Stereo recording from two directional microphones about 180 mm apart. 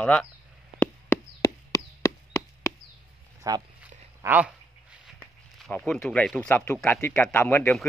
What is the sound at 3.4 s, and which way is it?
Speech, 20° right (ahead or behind).